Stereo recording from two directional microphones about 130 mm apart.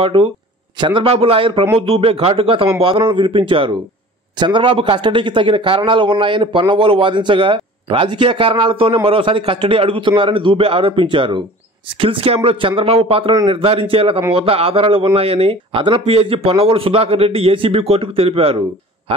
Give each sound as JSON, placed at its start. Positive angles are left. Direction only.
{"t": 0.0, "sound": "a man's voice", "side_deg": -45}